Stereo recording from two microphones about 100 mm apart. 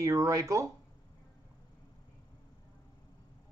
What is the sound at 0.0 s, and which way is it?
Speech, 35° right (ahead or behind).